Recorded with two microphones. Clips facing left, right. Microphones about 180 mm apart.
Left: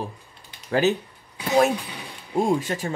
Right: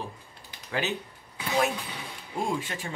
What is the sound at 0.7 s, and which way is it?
Speech, 40° left (ahead or behind).